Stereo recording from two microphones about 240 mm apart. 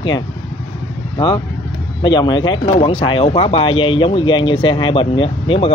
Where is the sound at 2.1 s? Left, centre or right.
Centre.